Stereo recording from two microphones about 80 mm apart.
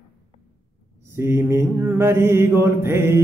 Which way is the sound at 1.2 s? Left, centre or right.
Right.